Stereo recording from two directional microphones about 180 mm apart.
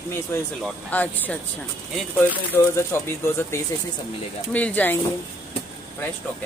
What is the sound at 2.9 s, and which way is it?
Speech, 15° left (ahead or behind).